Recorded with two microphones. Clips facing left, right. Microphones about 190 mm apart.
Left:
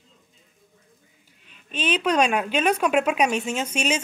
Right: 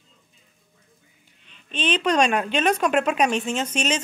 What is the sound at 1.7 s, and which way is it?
Speech, 5° left (ahead or behind).